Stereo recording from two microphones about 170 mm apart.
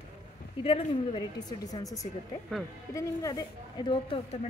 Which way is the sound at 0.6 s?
35° left (ahead or behind).